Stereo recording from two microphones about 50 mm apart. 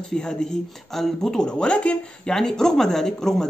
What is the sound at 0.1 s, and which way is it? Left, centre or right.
Speech, centre.